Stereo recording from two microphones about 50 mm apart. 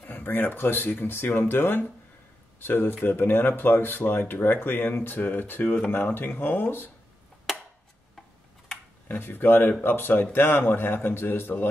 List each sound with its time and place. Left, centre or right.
0.0 s speech: left
9.0 s speech: left